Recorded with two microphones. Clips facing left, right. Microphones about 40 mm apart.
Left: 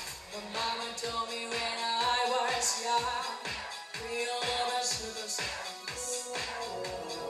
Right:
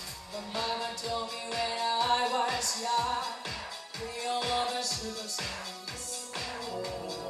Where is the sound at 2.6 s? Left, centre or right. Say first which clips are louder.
Even; left.